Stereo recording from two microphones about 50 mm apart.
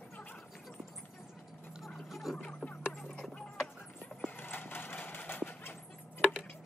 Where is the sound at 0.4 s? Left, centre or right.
Centre.